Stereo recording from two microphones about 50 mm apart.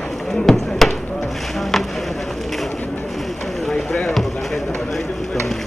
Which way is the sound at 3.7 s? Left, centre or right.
Centre.